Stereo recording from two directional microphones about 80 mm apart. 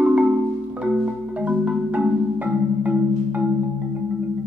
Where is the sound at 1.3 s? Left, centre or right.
Centre.